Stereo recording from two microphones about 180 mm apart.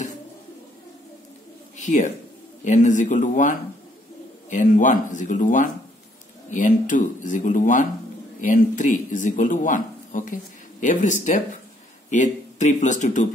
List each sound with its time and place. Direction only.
1.8 s speech: 45° left (ahead or behind)